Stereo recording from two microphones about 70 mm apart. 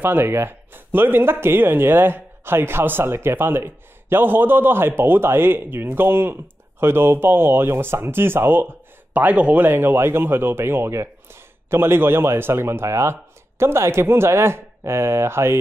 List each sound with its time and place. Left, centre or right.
0.0 s speech: right